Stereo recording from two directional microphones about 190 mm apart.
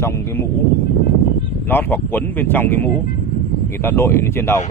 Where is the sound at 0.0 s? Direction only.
15° left (ahead or behind).